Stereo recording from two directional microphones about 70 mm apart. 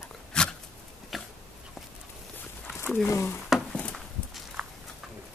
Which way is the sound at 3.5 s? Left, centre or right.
Centre.